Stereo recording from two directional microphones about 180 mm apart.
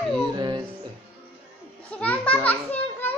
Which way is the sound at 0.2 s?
25° right (ahead or behind).